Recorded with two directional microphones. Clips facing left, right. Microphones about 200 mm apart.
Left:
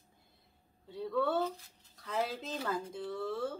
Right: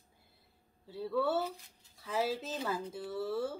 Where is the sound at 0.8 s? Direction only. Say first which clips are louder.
Even; 5° right (ahead or behind).